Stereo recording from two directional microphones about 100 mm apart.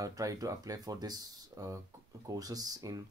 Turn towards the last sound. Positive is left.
turn(degrees=-35)  # may be behind; listen again after turning